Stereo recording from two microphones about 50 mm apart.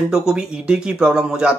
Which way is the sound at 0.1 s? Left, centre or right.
Centre.